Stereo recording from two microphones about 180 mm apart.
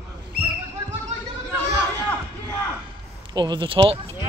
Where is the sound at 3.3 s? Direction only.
25° right (ahead or behind).